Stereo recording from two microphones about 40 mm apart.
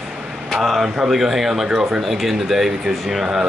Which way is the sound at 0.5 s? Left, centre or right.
Centre.